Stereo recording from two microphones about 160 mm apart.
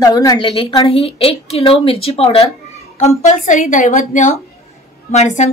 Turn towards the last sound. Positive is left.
turn(degrees=45)  # may be behind; listen again after turning